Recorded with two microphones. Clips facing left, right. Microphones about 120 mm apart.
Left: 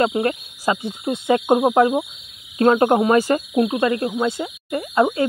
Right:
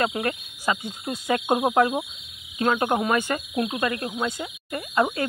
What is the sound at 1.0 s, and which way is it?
Speech, 25° left (ahead or behind).